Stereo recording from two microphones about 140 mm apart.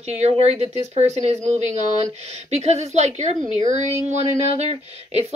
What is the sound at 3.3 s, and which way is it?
Speech, 35° left (ahead or behind).